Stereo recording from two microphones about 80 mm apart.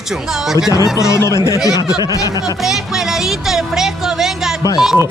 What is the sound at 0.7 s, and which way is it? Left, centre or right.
Speech, left.